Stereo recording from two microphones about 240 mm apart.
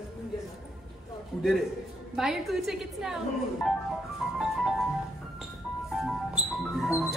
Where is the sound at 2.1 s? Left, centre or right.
Centre.